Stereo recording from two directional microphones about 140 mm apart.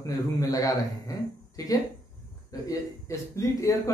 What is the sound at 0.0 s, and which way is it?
Speech, 25° left (ahead or behind).